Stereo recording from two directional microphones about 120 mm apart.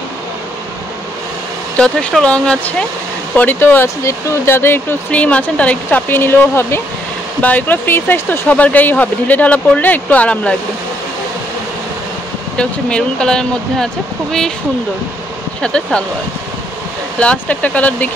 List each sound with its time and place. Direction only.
1.8 s speech: 10° left (ahead or behind)
12.5 s speech: 5° left (ahead or behind)
15.6 s speech: 10° left (ahead or behind)
17.2 s speech: 10° left (ahead or behind)